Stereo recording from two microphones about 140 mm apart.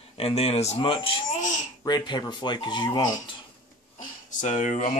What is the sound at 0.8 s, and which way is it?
Speech, 40° left (ahead or behind).